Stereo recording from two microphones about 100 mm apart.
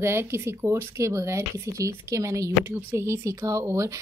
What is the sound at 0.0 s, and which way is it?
Speech, 25° right (ahead or behind).